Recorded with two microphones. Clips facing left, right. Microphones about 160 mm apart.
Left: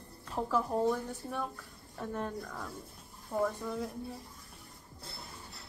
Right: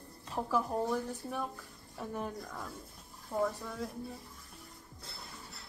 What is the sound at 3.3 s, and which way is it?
Speech, 10° left (ahead or behind).